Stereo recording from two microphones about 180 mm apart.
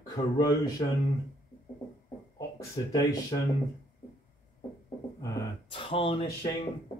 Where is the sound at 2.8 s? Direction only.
25° left (ahead or behind).